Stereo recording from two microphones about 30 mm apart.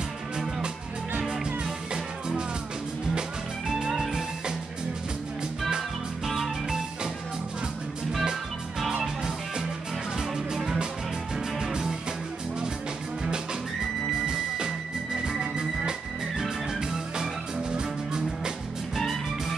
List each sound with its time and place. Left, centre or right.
6.2 s music: centre
8.2 s music: centre
17.6 s music: right